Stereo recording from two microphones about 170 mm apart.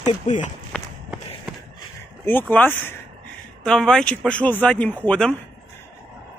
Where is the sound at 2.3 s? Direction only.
10° left (ahead or behind).